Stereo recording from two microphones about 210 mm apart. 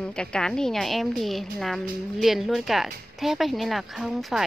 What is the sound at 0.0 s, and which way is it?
A woman's voice, 5° left (ahead or behind).